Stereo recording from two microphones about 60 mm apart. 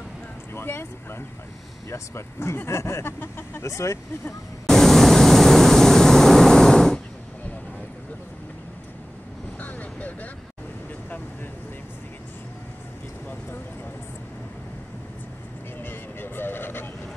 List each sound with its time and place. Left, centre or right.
0.6 s speech: left
3.1 s a sound: left
3.6 s speech: left
4.6 s vehicle: centre
9.6 s vehicle: left
15.8 s vehicle: left